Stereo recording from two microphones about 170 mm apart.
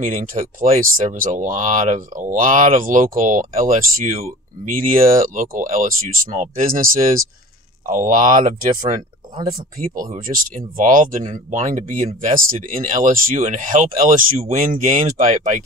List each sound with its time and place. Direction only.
0.0 s speech: 50° right (ahead or behind)
10.2 s speech: 55° right (ahead or behind)